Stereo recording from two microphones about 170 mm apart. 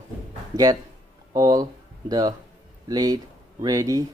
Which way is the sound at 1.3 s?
20° right (ahead or behind).